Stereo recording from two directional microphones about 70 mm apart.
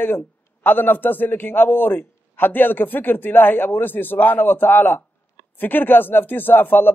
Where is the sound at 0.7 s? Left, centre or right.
Left.